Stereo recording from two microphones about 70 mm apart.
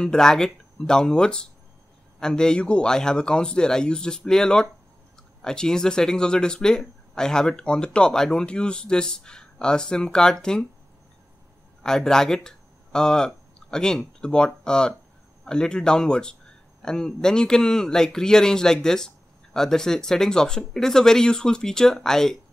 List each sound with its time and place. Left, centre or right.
0.0 s speech: centre
11.8 s speech: centre